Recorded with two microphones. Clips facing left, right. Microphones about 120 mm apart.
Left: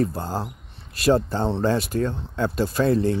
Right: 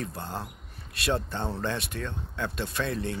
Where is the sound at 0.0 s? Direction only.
35° left (ahead or behind).